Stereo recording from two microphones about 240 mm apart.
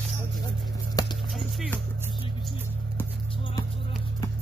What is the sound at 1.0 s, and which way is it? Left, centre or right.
Clip-clop, centre.